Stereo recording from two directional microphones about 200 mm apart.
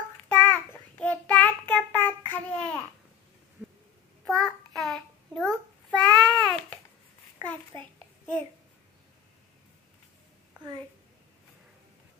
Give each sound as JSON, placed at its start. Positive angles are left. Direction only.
{"t": 0.3, "sound": "child singing", "side_deg": 10}
{"t": 4.2, "sound": "child singing", "side_deg": 0}
{"t": 7.7, "sound": "a sound", "side_deg": -25}